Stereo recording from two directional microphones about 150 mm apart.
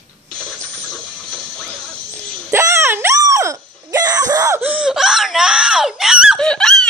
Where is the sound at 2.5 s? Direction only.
15° right (ahead or behind).